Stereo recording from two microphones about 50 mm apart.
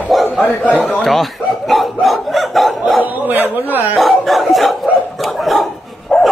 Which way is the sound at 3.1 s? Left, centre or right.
Right.